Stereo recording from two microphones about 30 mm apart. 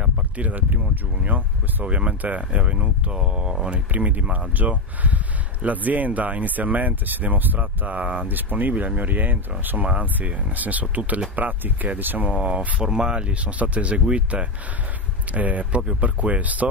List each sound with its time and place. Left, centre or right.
0.4 s speech: right
1.2 s speech: right
1.9 s speech: right
3.2 s speech: right
3.9 s speech: right
8.3 s speech: right
10.2 s speech: right
11.3 s speech: right
12.4 s speech: right
12.8 s speech: right
15.3 s speech: right
15.7 s speech: right
16.0 s speech: right